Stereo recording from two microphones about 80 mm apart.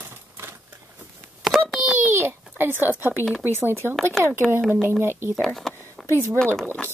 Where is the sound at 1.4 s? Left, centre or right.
Centre.